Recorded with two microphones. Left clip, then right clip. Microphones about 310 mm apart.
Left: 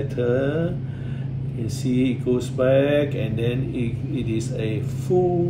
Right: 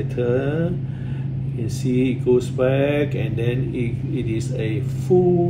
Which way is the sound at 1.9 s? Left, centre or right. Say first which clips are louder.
Right 4 dB; centre.